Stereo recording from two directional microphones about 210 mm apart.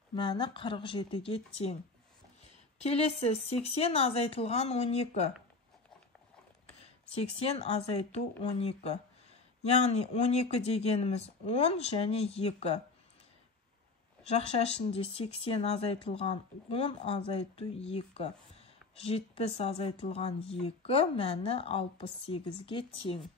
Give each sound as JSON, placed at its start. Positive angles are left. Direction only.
{"t": 0.1, "sound": "speech", "side_deg": 20}
{"t": 2.8, "sound": "speech", "side_deg": 30}
{"t": 7.2, "sound": "speech", "side_deg": 30}
{"t": 14.3, "sound": "speech", "side_deg": 30}